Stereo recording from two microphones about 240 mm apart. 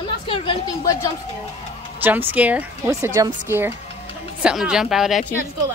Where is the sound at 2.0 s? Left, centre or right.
Centre.